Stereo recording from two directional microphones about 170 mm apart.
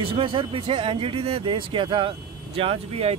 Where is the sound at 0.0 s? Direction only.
30° right (ahead or behind).